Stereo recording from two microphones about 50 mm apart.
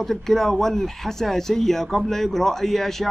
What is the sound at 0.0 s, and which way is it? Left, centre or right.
A man's voice, centre.